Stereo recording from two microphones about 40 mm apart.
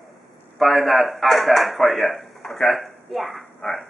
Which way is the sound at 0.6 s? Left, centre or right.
Centre.